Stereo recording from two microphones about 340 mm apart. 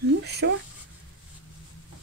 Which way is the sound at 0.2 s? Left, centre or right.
Right.